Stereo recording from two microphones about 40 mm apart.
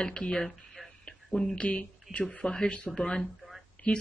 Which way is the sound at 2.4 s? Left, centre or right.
Centre.